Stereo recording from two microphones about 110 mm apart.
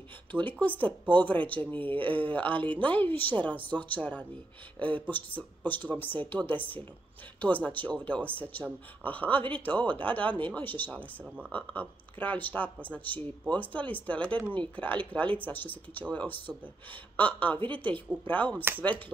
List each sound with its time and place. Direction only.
0.3 s speech: 15° left (ahead or behind)
11.0 s speech: 10° right (ahead or behind)
11.5 s speech: 15° left (ahead or behind)